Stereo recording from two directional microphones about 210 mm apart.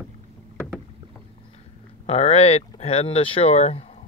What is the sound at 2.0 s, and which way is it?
Speech, 30° left (ahead or behind).